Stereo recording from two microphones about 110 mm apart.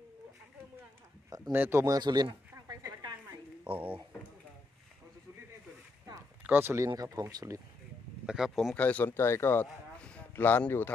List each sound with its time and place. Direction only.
1.5 s speech: 20° right (ahead or behind); by 2.3 s 40° right (ahead or behind)
2.5 s a sound: 35° right (ahead or behind)
3.6 s speech: 15° right (ahead or behind)
6.4 s speech: 20° right (ahead or behind)
7.0 s speech: 35° right (ahead or behind)
8.3 s speech: centre (ahead or behind)
8.7 s speech: 15° left (ahead or behind)